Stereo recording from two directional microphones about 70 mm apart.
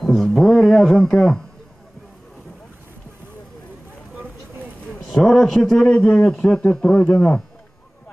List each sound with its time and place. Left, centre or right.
0.0 s music: centre
5.1 s speech: centre